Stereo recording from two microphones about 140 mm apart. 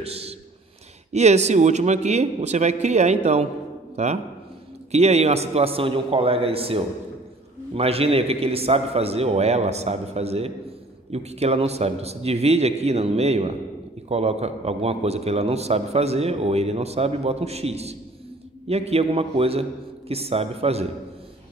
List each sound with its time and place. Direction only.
0.0 s a man's voice: 45° right (ahead or behind)